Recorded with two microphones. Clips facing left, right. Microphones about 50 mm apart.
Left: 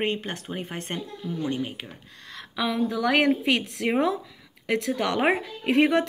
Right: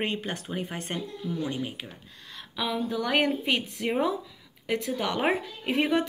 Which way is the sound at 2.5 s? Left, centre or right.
Left.